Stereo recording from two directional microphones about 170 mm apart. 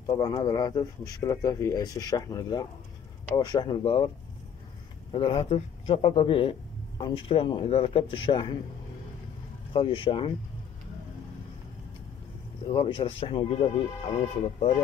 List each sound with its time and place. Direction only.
0.0 s speech: 20° left (ahead or behind)
5.1 s speech: 30° left (ahead or behind)
9.7 s speech: 30° left (ahead or behind)
12.6 s speech: 30° left (ahead or behind)